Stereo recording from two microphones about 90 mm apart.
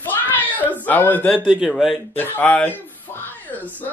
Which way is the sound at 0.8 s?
20° left (ahead or behind).